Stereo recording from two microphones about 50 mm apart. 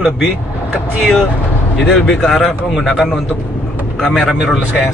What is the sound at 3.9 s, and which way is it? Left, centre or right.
Speech, centre.